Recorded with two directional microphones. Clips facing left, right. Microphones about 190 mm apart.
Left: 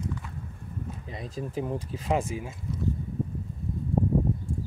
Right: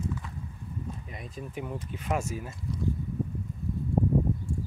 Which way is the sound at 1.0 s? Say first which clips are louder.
Left 4 dB; 30° left (ahead or behind).